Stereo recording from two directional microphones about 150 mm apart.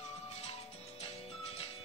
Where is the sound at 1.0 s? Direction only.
40° left (ahead or behind).